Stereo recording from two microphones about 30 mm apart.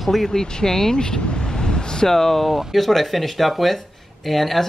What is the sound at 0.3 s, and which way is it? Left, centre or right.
Speech, left.